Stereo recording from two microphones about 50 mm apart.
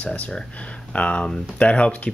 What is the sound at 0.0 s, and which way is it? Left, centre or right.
Speech, left.